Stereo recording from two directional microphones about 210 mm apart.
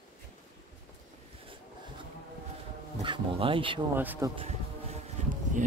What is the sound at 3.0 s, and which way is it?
Speech, 25° right (ahead or behind).